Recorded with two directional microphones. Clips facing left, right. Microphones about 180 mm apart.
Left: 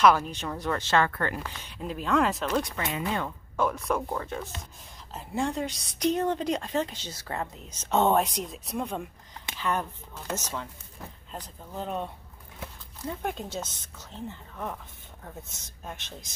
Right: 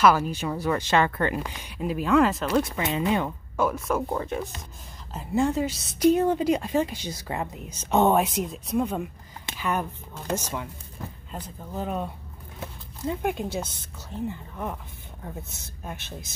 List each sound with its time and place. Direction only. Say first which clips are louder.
0.0 s a woman's voice: right 1 dB; 5° right (ahead or behind)
2.9 s a woman's voice: right 6 dB; 20° right (ahead or behind); by 4.0 s 5° right (ahead or behind)
4.1 s a woman's voice: right 4 dB; 20° right (ahead or behind)
5.1 s a woman's voice: right 6 dB; centre (ahead or behind)